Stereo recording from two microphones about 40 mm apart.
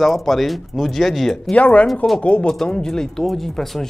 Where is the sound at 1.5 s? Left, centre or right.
Left.